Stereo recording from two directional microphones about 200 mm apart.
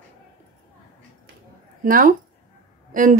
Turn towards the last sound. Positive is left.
turn(degrees=-40)  # may be behind; listen again after turning